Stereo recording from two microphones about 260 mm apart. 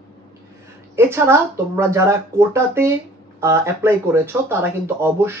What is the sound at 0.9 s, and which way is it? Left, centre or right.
Speech, centre.